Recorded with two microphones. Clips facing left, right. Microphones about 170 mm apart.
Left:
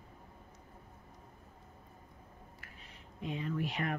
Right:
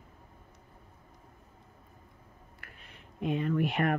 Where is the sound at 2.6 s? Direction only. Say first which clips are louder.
Right 1 dB; 60° right (ahead or behind).